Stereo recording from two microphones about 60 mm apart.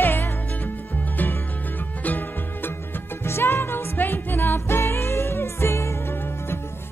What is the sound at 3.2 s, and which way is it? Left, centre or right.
Music, left.